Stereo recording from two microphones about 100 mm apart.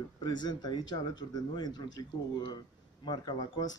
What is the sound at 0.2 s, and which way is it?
A man's voice, 45° left (ahead or behind).